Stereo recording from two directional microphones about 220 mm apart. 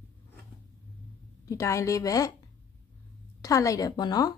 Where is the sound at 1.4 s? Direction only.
15° left (ahead or behind).